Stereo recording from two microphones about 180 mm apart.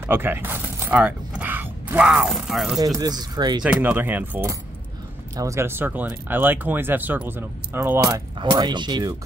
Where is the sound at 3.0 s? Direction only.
20° right (ahead or behind).